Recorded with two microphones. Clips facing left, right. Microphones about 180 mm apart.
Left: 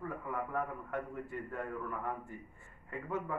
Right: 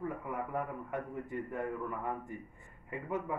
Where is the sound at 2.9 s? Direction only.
15° right (ahead or behind).